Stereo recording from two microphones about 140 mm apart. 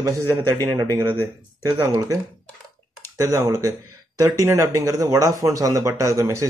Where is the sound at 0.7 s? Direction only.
25° right (ahead or behind).